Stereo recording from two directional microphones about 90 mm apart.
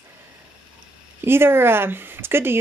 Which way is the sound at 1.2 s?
25° right (ahead or behind).